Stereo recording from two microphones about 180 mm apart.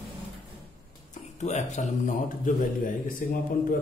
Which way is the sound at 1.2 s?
40° left (ahead or behind).